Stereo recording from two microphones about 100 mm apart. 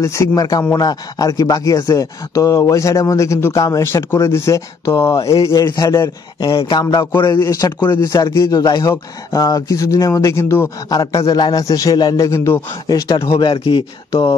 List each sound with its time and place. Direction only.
0.0 s speech: 30° left (ahead or behind)
6.4 s a man's voice: 45° left (ahead or behind)
7.4 s speech: 35° left (ahead or behind)
11.3 s a man's voice: 45° left (ahead or behind)
11.6 s speech: 35° left (ahead or behind)
12.3 s a man's voice: 25° left (ahead or behind)
12.8 s a man's voice: 45° left (ahead or behind)
13.3 s speech: 60° left (ahead or behind)